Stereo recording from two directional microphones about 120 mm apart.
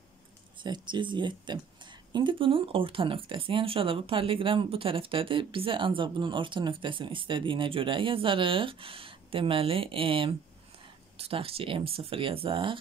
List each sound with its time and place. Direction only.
0.6 s speech: 40° right (ahead or behind)